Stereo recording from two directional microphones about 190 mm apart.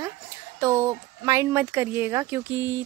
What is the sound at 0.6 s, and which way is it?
Speech, 15° right (ahead or behind).